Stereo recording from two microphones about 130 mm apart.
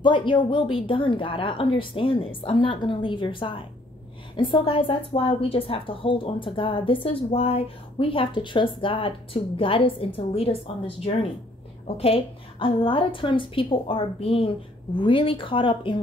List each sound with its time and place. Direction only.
0.0 s a woman's voice: 40° left (ahead or behind)